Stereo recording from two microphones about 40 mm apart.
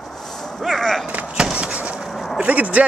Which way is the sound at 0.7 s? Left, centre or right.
Centre.